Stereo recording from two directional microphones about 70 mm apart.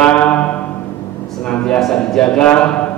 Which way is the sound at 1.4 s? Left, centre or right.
Centre.